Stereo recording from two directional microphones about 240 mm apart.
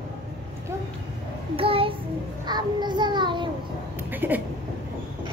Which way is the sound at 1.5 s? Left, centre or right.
Right.